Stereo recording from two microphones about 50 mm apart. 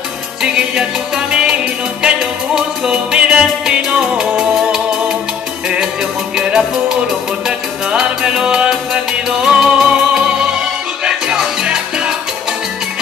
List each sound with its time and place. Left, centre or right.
0.4 s music: centre
6.3 s music: centre